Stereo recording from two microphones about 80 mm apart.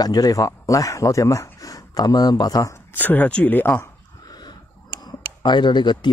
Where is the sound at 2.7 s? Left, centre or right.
Left.